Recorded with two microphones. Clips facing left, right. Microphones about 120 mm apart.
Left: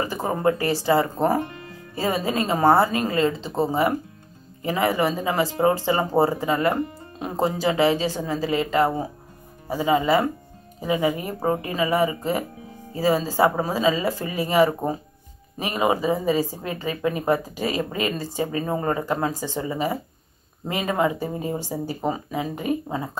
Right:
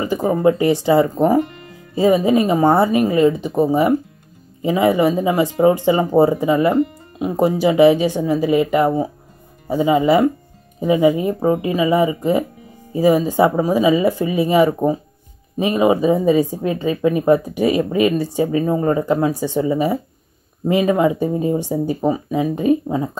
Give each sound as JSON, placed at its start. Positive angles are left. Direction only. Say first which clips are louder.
{"t": 0.0, "sound": "speech", "louder": "right 6 dB", "side_deg": -15}